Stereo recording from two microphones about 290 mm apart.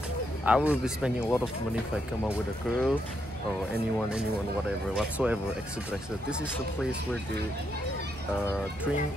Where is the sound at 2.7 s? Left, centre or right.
Centre.